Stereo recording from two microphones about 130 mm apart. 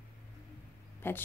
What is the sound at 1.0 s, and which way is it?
Speech, 15° left (ahead or behind).